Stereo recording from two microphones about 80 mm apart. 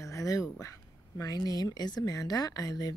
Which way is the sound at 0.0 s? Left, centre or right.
Left.